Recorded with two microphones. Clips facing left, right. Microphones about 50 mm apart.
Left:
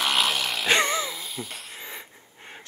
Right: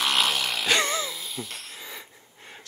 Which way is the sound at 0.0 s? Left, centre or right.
Centre.